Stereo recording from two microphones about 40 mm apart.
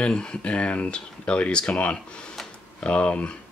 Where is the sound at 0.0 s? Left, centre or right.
Left.